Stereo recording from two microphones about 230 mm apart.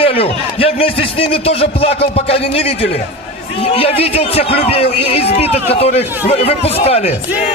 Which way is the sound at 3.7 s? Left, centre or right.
Left.